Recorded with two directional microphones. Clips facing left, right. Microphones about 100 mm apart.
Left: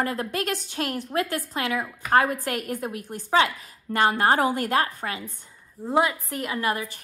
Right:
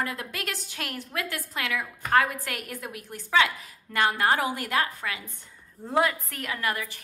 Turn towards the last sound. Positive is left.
turn(degrees=30)  # may be behind; listen again after turning